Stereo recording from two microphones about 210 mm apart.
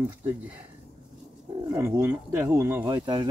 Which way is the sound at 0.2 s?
10° right (ahead or behind).